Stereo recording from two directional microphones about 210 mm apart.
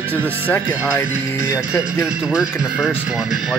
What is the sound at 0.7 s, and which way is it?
Speech, 10° right (ahead or behind).